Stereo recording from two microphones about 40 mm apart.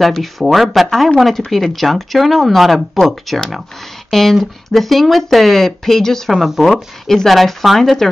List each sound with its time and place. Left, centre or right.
0.0 s speech: centre
6.3 s speech: centre
7.2 s speech: centre